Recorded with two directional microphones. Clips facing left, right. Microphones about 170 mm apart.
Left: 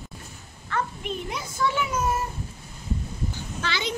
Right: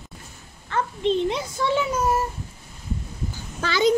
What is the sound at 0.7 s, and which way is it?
A child's voice, 25° right (ahead or behind).